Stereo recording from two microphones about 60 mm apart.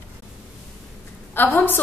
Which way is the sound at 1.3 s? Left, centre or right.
Left.